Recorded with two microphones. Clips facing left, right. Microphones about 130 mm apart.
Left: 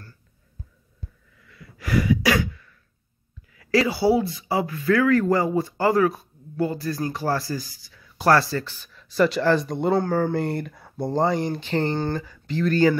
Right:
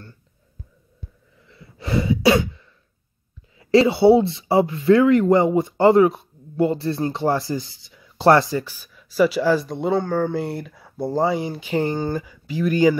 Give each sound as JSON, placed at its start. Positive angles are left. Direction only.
{"t": 1.4, "sound": "sneeze", "side_deg": -25}
{"t": 3.5, "sound": "speech", "side_deg": -25}